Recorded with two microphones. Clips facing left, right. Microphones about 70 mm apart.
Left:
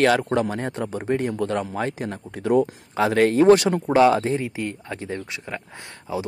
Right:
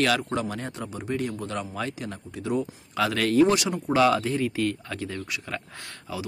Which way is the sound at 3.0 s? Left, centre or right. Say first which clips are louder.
Left 3 dB; left.